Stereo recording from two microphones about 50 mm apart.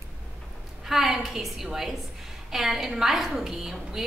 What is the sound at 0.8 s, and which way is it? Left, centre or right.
A woman's voice, centre.